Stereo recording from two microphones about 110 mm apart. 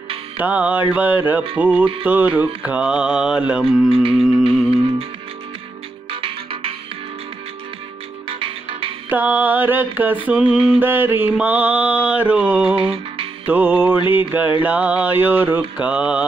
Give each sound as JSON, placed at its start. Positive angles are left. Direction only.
{"t": 0.4, "sound": "mantra", "side_deg": -15}
{"t": 3.9, "sound": "music", "side_deg": -55}
{"t": 4.2, "sound": "music", "side_deg": -5}
{"t": 6.2, "sound": "music", "side_deg": -55}
{"t": 8.3, "sound": "music", "side_deg": -55}
{"t": 9.1, "sound": "mantra", "side_deg": -15}
{"t": 10.8, "sound": "mantra", "side_deg": -20}
{"t": 12.7, "sound": "music", "side_deg": -55}
{"t": 13.5, "sound": "mantra", "side_deg": -15}